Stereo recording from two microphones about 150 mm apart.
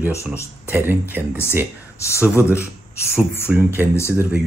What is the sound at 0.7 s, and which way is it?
Speech, 15° right (ahead or behind).